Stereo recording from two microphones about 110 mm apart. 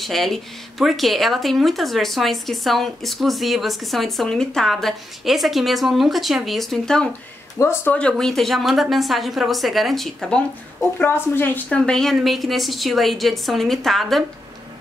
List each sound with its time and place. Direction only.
0.0 s speech: centre (ahead or behind)
7.5 s speech: 25° left (ahead or behind)
7.9 s speech: 10° left (ahead or behind)
11.0 s speech: 20° left (ahead or behind); by 14.2 s centre (ahead or behind)